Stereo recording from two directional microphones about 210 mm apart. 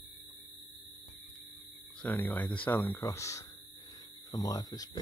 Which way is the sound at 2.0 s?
5° left (ahead or behind).